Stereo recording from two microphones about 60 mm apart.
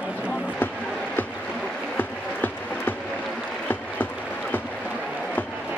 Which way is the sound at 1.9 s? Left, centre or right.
Left.